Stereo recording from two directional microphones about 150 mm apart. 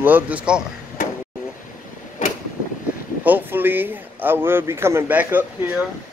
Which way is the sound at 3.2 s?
10° right (ahead or behind).